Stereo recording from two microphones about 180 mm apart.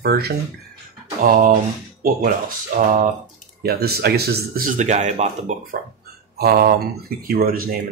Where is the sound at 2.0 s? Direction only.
50° right (ahead or behind).